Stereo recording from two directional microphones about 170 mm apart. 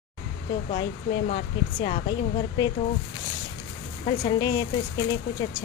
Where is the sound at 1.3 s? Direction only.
35° left (ahead or behind).